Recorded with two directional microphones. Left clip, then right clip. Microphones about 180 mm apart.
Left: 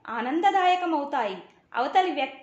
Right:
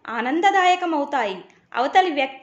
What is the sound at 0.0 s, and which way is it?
A woman's voice, 20° right (ahead or behind).